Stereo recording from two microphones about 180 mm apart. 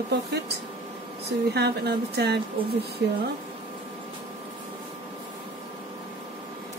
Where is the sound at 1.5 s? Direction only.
65° right (ahead or behind).